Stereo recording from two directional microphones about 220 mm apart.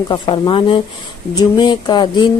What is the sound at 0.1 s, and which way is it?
Speech, 20° left (ahead or behind).